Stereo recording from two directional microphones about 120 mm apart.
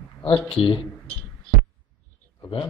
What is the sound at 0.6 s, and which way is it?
Speech, 50° left (ahead or behind).